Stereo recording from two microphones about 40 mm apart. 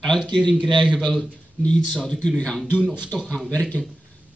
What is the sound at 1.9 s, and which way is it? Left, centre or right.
Speech, centre.